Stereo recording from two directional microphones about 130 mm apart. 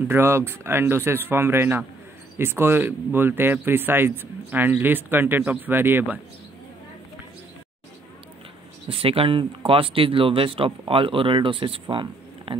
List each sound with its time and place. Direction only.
0.1 s speech: 20° right (ahead or behind)
8.8 s speech: 45° right (ahead or behind)